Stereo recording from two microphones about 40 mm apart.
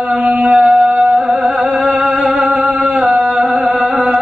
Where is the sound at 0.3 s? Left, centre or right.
Centre.